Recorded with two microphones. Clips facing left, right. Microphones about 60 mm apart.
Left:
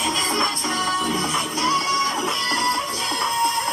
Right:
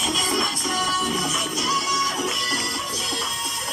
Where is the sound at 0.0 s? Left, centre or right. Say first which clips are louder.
Left 2 dB; left.